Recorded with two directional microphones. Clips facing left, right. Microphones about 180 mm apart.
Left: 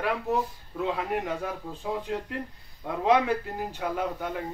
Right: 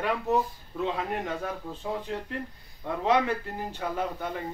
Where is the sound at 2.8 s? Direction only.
10° left (ahead or behind).